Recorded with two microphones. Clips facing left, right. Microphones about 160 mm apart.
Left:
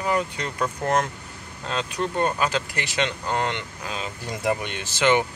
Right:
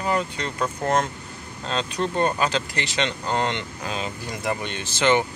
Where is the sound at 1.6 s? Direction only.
5° left (ahead or behind).